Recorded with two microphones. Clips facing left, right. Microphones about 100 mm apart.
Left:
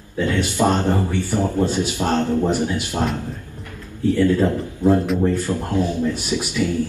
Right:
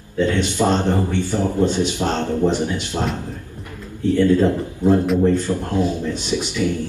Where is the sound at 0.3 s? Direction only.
25° right (ahead or behind).